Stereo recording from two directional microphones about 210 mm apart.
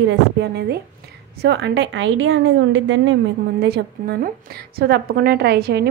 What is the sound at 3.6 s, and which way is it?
A woman's voice, 45° right (ahead or behind).